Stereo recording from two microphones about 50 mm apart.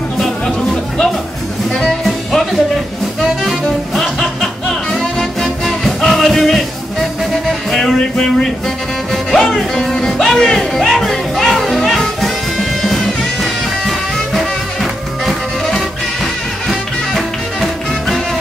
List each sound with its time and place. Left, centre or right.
0.2 s music: centre
3.6 s music: centre